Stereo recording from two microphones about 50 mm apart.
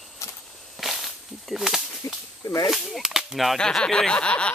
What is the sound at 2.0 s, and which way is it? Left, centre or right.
Whip, left.